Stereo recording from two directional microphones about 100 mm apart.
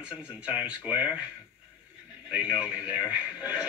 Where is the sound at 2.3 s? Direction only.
10° right (ahead or behind).